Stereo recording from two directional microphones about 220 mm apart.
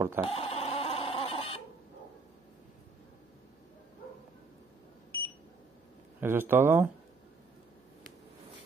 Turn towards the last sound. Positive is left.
turn(degrees=-10)  # may be behind; listen again after turning